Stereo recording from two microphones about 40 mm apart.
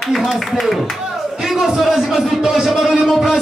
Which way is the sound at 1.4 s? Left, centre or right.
Centre.